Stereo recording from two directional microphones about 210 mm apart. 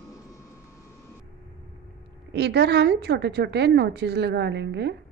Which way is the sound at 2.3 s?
50° right (ahead or behind).